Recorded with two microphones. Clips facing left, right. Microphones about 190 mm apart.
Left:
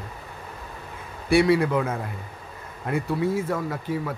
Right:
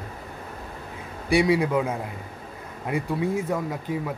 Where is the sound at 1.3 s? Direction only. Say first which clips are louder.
Left 2 dB; 15° right (ahead or behind).